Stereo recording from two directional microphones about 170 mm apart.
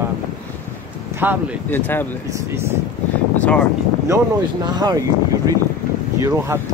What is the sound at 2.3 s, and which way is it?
Speech, 15° right (ahead or behind).